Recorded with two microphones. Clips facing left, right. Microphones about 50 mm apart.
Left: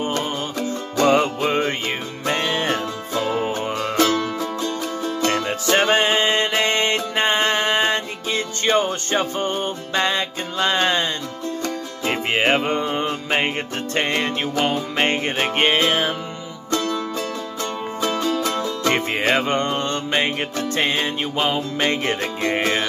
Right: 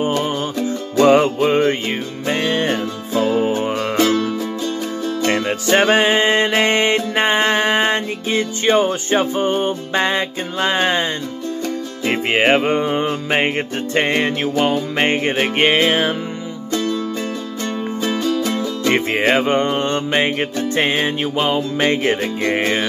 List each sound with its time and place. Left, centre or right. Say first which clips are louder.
0.1 s music: right 4 dB; centre
1.4 s music: right 5 dB; centre
3.9 s music: right 2 dB; right
5.2 s music: right 2 dB; right
18.4 s music: right 2 dB; centre
21.7 s music: right 4 dB; centre